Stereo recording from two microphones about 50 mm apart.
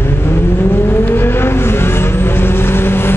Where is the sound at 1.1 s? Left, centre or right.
Left.